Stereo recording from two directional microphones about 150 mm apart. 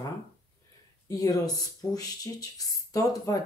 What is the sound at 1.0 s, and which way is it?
Speech, 25° left (ahead or behind).